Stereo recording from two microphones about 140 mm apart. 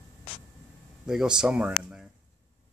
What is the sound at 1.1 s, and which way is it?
Speech, 5° right (ahead or behind).